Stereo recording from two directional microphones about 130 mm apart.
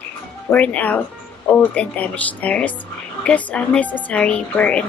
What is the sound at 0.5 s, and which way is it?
A woman's voice, 10° left (ahead or behind).